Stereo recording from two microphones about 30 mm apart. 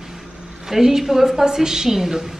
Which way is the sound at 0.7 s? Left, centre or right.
Centre.